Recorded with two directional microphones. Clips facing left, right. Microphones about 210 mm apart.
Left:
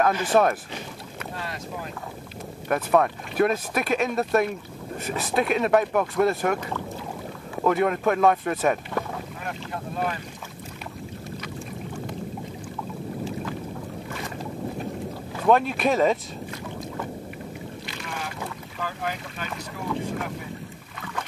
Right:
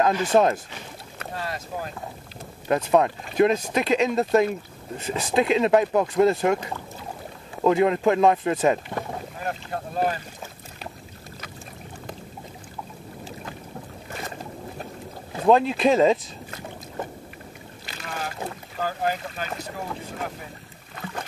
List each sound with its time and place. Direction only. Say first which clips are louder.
0.0 s speech: right 1 dB; 20° right (ahead or behind)
2.7 s speech: right 1 dB; 20° right (ahead or behind)
7.6 s speech: right 3 dB; 25° right (ahead or behind)
9.4 s speech: right 2 dB; 40° right (ahead or behind)
15.3 s speech: right 2 dB; 25° right (ahead or behind)
17.8 s boat: right 5 dB; 40° right (ahead or behind)
21.0 s boat: right 1 dB; 35° right (ahead or behind)